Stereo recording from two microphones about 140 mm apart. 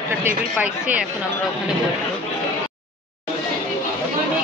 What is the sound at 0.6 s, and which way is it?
Speech, 10° right (ahead or behind).